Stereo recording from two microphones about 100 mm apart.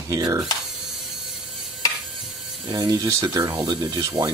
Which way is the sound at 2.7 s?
35° right (ahead or behind).